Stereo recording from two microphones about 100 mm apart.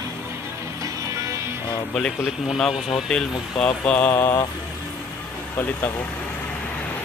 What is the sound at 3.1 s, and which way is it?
Speech, 10° left (ahead or behind).